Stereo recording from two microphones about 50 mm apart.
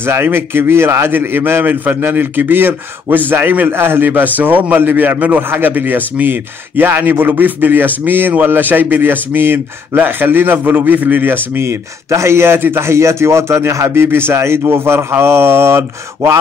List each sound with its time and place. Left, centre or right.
0.0 s a man's voice: right
11.6 s speech: right
12.9 s speech: right